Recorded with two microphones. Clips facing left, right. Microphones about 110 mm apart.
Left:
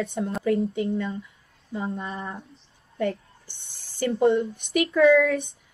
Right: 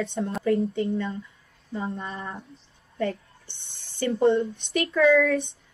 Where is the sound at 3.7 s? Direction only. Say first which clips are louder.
Even; 60° right (ahead or behind).